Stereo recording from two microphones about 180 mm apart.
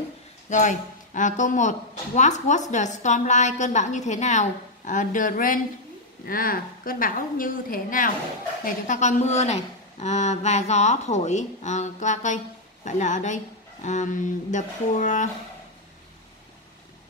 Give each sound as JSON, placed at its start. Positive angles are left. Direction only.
{"t": 0.5, "sound": "a woman's voice", "side_deg": 45}